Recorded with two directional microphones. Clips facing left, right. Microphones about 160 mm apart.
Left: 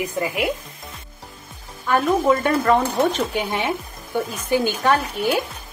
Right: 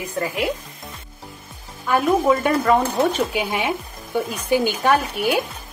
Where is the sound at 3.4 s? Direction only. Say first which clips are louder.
Even; 15° right (ahead or behind).